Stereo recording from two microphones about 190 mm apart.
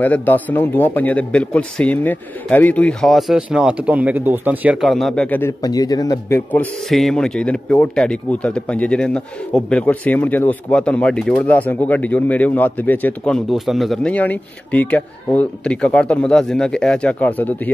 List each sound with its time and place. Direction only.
0.0 s speech: 10° left (ahead or behind)
5.6 s speech: 20° left (ahead or behind)
6.5 s a man's voice: 5° left (ahead or behind)